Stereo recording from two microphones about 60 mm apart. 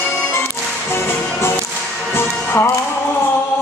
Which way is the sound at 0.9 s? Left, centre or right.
Left.